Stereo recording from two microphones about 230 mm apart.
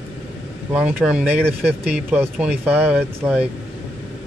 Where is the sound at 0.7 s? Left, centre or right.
Centre.